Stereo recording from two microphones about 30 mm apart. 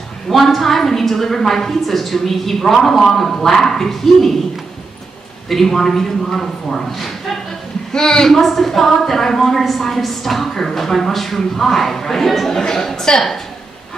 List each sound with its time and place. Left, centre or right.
0.3 s a woman's voice: centre
5.5 s a woman's voice: centre
7.9 s a woman's voice: left
8.3 s a woman's voice: centre; by 13.2 s left